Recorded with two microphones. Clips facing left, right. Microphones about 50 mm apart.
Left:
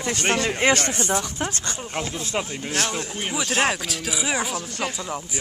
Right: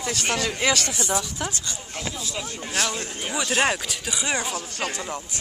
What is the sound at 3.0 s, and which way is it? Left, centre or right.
Speech, left.